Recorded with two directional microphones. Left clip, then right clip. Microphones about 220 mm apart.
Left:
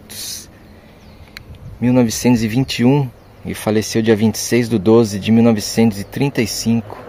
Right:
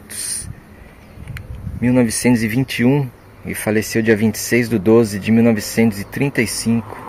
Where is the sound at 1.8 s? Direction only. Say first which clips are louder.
Left 1 dB; 10° left (ahead or behind).